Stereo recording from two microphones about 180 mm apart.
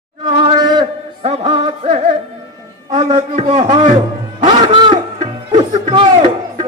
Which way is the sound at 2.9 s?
35° right (ahead or behind).